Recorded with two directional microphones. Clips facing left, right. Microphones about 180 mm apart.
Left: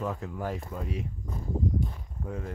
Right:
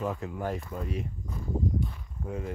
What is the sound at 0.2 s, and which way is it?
Speech, centre (ahead or behind).